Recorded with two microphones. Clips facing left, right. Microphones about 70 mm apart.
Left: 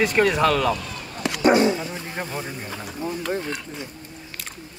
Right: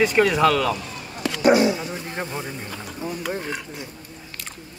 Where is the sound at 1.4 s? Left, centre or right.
Left.